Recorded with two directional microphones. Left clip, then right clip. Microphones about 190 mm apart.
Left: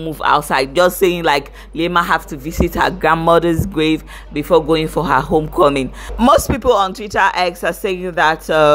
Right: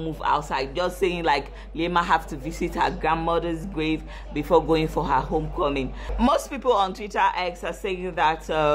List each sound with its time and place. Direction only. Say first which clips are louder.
0.2 s speech: left 10 dB; 30° left (ahead or behind)
4.3 s speech: left 7 dB; 15° left (ahead or behind)